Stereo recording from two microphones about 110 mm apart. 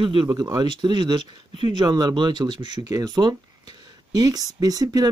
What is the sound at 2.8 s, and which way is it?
Speech, 30° right (ahead or behind).